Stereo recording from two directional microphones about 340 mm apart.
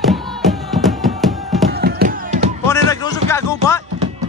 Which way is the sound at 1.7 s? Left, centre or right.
Right.